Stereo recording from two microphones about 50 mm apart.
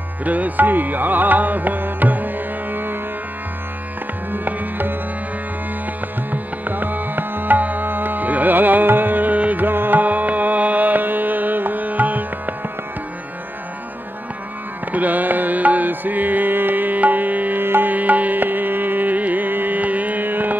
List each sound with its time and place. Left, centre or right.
0.2 s music: right
4.3 s music: right
6.3 s music: right
14.9 s music: right